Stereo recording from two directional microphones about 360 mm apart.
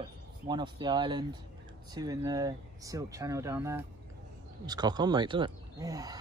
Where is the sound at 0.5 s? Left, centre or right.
Centre.